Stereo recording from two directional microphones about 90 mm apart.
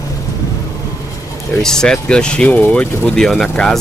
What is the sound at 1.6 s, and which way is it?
Speech, 5° left (ahead or behind).